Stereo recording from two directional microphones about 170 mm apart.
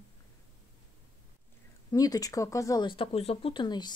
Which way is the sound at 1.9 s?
20° left (ahead or behind).